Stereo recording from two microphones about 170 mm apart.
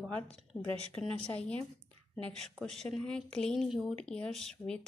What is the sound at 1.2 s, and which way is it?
A woman's voice, 5° left (ahead or behind).